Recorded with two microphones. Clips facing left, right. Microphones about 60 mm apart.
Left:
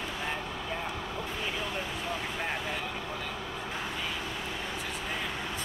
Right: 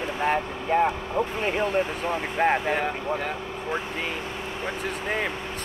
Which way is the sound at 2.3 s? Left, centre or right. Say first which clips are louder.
Right 11 dB; right.